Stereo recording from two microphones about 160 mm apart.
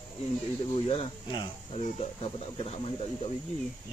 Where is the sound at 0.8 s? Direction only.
35° left (ahead or behind).